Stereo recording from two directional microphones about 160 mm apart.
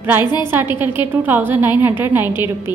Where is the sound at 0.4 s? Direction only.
15° right (ahead or behind).